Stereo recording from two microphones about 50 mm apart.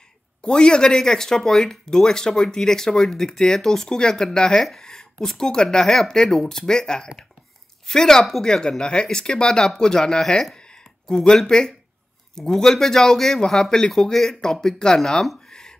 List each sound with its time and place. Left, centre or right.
0.4 s speech: centre